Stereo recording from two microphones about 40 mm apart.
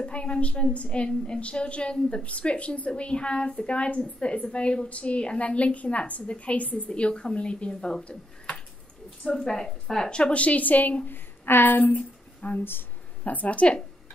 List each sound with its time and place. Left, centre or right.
0.0 s a woman's voice: left
6.9 s a woman's voice: left
10.1 s a woman's voice: left
11.1 s a woman's voice: left